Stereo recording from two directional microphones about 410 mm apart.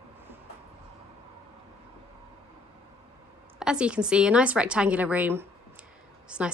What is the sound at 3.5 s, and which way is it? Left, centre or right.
Speech, centre.